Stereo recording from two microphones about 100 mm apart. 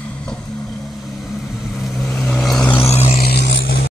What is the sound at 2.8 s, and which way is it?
Vehicle, 90° left.